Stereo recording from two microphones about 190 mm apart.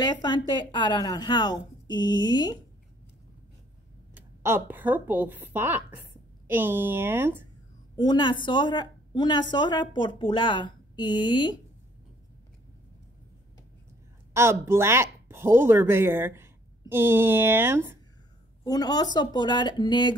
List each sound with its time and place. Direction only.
0.0 s a woman's voice: 20° left (ahead or behind)
4.1 s a woman's voice: 10° right (ahead or behind)
7.9 s a woman's voice: 25° left (ahead or behind)
14.3 s speech: 15° right (ahead or behind)
18.6 s a woman's voice: 20° left (ahead or behind)